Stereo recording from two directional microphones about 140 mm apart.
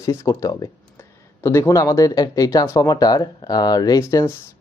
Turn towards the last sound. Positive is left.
turn(degrees=25)  # may be behind; listen again after turning